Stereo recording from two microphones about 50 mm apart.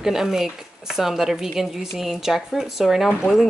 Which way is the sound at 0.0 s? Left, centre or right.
Centre.